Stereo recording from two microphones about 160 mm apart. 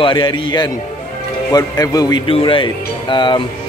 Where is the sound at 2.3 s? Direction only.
35° left (ahead or behind).